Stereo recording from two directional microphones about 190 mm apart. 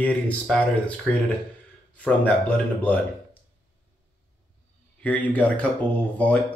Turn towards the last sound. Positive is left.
turn(degrees=5)  # may be behind; listen again after turning